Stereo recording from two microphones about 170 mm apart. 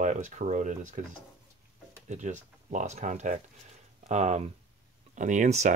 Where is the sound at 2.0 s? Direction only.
45° right (ahead or behind).